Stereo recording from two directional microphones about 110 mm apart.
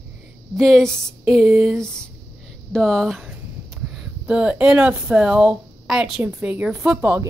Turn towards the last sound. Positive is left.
turn(degrees=-15)  # may be behind; listen again after turning